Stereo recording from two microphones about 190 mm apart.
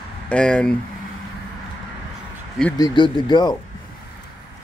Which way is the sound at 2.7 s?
20° left (ahead or behind).